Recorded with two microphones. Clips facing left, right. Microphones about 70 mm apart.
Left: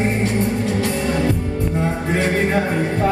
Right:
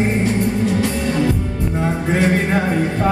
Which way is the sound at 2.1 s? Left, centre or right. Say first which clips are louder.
Right 2 dB; centre.